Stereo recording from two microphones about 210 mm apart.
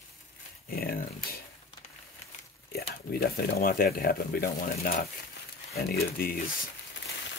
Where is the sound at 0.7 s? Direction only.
45° left (ahead or behind).